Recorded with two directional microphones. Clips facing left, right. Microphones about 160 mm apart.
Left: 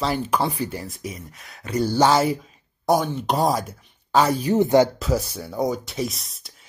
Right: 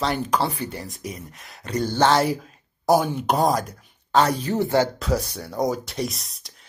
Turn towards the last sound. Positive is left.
turn(degrees=0)  # may be behind; listen again after turning